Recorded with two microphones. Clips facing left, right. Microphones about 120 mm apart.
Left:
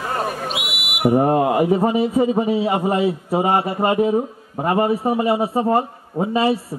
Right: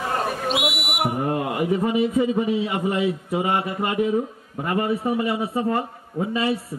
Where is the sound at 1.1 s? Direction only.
35° left (ahead or behind).